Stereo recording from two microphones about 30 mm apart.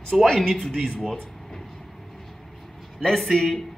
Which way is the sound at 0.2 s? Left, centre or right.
Centre.